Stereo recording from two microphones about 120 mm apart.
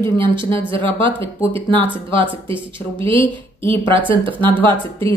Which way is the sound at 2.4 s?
45° right (ahead or behind).